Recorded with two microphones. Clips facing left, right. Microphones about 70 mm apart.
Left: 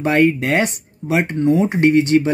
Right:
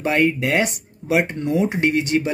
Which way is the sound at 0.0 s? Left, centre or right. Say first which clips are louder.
Left 4 dB; left.